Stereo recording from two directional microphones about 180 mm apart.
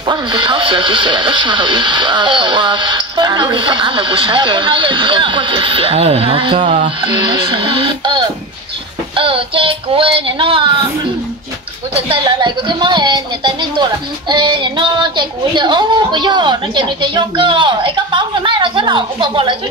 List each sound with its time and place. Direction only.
0.1 s speech: 25° right (ahead or behind)
6.6 s speech: 40° right (ahead or behind)
7.0 s speech: 25° right (ahead or behind)
11.9 s speech: 25° right (ahead or behind)